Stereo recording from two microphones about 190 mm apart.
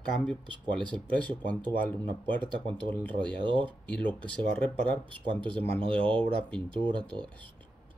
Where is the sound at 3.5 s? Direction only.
25° right (ahead or behind).